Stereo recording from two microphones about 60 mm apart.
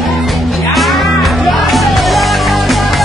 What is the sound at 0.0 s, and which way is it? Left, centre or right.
Music, centre.